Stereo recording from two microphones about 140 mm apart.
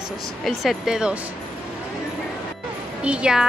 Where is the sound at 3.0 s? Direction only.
10° right (ahead or behind).